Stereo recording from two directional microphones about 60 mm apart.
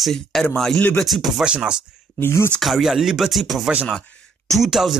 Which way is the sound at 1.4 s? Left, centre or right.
Centre.